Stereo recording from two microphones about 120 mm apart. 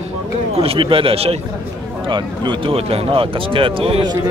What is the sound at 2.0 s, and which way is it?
Speech, 40° right (ahead or behind).